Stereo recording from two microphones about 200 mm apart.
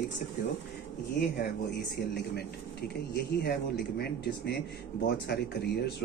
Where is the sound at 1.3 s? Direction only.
50° left (ahead or behind).